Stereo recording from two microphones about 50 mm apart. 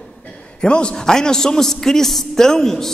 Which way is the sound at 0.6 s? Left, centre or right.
Centre.